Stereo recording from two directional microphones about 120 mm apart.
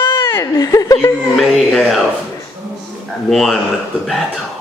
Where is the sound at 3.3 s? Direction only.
Centre (ahead or behind).